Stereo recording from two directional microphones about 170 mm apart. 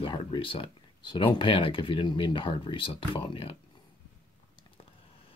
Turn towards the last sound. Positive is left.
turn(degrees=30)  # may be behind; listen again after turning